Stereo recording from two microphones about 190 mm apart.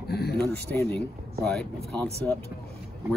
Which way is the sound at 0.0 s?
55° left (ahead or behind).